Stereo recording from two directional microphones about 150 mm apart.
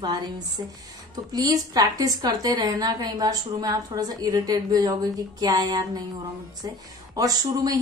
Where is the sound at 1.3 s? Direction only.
25° right (ahead or behind).